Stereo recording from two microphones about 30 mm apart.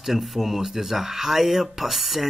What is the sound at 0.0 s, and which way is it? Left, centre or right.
Speech, centre.